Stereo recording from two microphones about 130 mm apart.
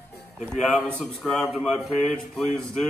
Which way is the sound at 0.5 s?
5° left (ahead or behind).